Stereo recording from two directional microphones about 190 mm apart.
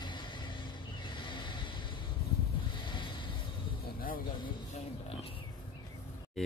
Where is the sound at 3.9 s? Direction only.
50° left (ahead or behind).